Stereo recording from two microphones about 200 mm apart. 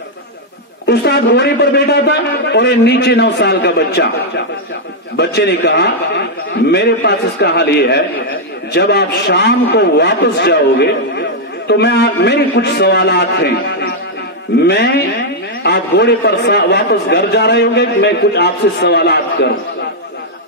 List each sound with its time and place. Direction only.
0.8 s a man's voice: 55° left (ahead or behind)
5.1 s a man's voice: 55° left (ahead or behind)